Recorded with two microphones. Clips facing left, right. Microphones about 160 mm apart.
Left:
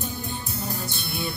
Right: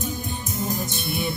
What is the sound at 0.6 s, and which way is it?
Music, 20° right (ahead or behind).